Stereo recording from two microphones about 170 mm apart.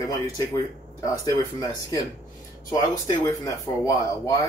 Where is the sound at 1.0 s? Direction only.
20° left (ahead or behind).